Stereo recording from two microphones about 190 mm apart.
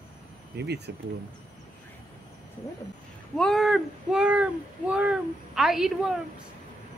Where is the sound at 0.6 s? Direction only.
60° right (ahead or behind).